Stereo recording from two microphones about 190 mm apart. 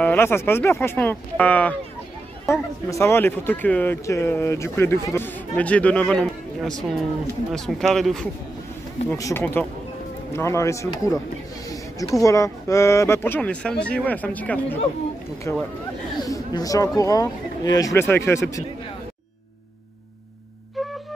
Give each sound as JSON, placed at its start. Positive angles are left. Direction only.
{"t": 0.0, "sound": "speech", "side_deg": 10}
{"t": 9.1, "sound": "speech", "side_deg": 15}